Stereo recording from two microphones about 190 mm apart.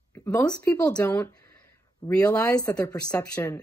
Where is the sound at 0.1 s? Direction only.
10° left (ahead or behind).